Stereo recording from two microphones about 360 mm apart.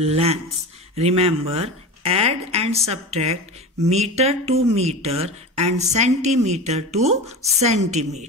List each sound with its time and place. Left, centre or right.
0.0 s speech: centre